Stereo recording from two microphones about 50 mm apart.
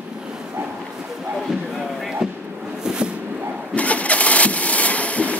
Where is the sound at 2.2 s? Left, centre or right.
Centre.